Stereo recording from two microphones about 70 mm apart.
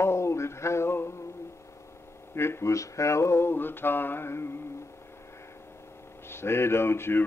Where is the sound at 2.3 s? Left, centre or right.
Left.